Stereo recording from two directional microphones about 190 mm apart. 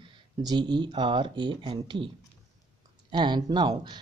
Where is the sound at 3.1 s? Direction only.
25° right (ahead or behind).